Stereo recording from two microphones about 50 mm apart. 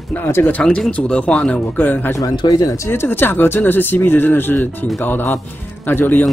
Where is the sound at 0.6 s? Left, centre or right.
Left.